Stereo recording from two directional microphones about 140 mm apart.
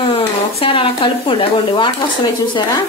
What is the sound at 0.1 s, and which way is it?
Speech, 40° left (ahead or behind).